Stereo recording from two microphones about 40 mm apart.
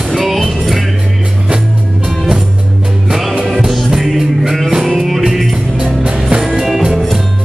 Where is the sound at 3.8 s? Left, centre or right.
Centre.